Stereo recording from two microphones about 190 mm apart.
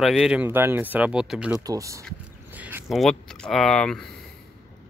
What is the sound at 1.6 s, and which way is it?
Speech, 15° right (ahead or behind).